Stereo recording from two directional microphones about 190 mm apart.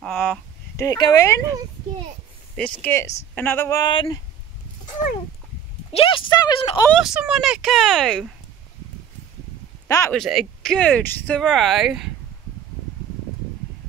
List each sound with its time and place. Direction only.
0.0 s a sound: 5° left (ahead or behind)
0.7 s speech: 20° left (ahead or behind)
2.8 s speech: 15° left (ahead or behind)
4.8 s a sound: 40° left (ahead or behind)
5.9 s speech: 25° left (ahead or behind)
7.0 s speech: 5° right (ahead or behind)
9.8 s speech: 15° left (ahead or behind)
10.1 s speech: centre (ahead or behind)